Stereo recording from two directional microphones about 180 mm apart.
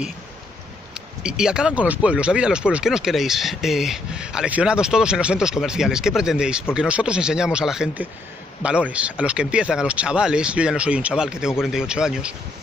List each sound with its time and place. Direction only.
1.2 s speech: 5° right (ahead or behind)